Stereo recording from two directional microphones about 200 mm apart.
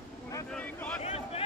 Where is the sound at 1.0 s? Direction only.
30° left (ahead or behind).